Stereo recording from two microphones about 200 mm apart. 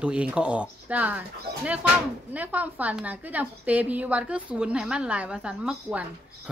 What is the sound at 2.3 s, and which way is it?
A woman's voice, 10° right (ahead or behind).